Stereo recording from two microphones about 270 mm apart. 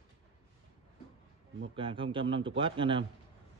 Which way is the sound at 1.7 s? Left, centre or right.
Centre.